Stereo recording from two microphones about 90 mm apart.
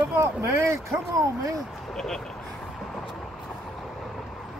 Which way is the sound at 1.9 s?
5° left (ahead or behind).